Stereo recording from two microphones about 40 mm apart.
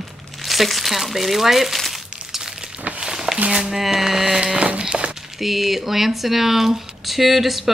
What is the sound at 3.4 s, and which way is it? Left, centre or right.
Speech, right.